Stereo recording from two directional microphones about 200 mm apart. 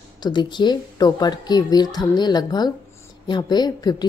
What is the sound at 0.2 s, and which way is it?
A woman's voice, 20° left (ahead or behind).